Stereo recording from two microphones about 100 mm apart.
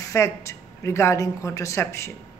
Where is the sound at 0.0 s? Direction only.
30° left (ahead or behind).